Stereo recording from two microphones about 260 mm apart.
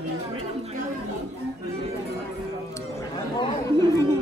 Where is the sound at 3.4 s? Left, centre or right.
Centre.